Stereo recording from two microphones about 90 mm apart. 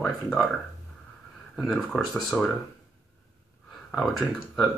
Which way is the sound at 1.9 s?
5° left (ahead or behind).